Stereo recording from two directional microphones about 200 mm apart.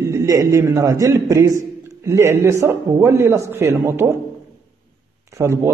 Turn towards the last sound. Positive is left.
turn(degrees=-15)  # may be behind; listen again after turning